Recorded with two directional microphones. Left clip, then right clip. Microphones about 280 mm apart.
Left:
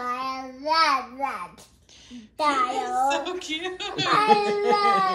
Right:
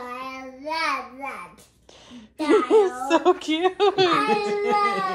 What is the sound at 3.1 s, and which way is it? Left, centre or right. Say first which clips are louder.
Speech: right 6 dB; centre.